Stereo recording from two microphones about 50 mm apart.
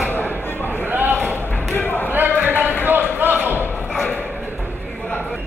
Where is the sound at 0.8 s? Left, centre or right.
Right.